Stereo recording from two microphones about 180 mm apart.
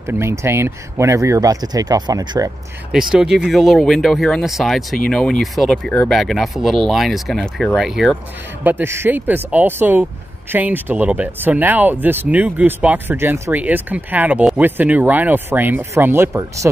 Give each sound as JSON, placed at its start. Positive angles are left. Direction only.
{"t": 0.1, "sound": "speech", "side_deg": -15}
{"t": 2.9, "sound": "speech", "side_deg": -5}